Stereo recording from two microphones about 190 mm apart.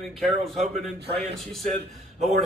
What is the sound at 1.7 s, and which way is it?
Speech, 35° right (ahead or behind).